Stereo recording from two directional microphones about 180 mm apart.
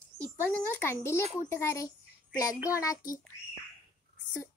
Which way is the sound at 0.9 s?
15° left (ahead or behind).